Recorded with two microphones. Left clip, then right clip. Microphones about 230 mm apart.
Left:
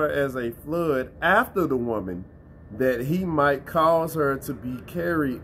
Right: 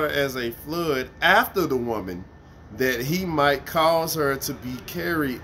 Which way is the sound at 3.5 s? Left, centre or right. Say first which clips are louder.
Right 1 dB; right.